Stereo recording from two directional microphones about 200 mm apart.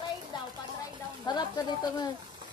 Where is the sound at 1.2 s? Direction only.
20° left (ahead or behind).